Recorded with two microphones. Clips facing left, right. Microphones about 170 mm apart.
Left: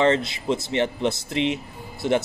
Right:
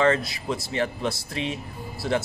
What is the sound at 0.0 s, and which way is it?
Speech, 25° left (ahead or behind).